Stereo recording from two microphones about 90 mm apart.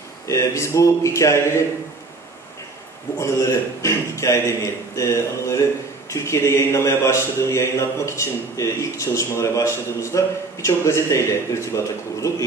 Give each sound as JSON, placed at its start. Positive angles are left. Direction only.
{"t": 0.3, "sound": "a man's voice", "side_deg": 35}
{"t": 3.2, "sound": "a man's voice", "side_deg": 30}